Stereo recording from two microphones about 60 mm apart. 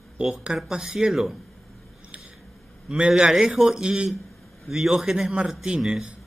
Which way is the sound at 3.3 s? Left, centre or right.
Centre.